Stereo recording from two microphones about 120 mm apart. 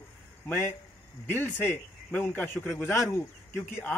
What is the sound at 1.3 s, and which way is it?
A man's voice, 15° left (ahead or behind).